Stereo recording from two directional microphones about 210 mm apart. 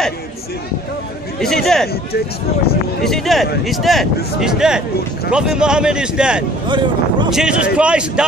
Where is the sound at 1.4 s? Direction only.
Centre (ahead or behind).